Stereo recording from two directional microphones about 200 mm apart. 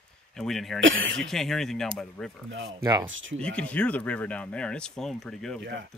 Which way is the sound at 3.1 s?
75° right (ahead or behind).